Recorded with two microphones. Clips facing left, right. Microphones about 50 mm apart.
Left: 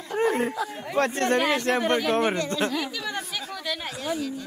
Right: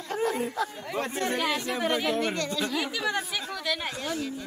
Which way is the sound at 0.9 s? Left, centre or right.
Left.